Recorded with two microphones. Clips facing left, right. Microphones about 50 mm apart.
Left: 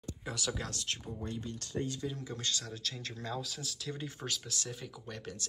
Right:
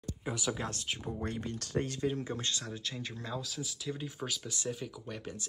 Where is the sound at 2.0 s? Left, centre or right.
Right; by 5.3 s centre.